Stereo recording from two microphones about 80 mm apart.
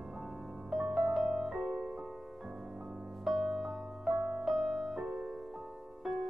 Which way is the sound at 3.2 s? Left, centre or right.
Centre.